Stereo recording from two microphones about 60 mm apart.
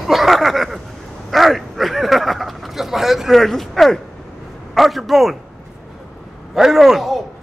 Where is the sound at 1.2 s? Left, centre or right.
Centre.